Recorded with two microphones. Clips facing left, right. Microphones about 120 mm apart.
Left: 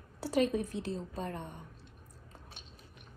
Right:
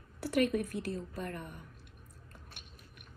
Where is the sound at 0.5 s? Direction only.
25° left (ahead or behind).